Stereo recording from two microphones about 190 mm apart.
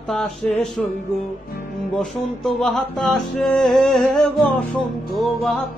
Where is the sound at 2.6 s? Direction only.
Centre (ahead or behind).